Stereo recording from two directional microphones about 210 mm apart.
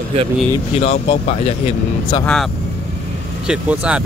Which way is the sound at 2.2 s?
5° left (ahead or behind).